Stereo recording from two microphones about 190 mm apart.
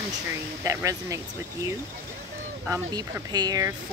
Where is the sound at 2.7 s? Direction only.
20° right (ahead or behind).